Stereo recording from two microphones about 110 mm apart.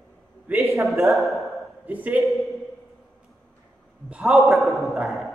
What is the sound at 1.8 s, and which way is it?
Speech, 15° right (ahead or behind).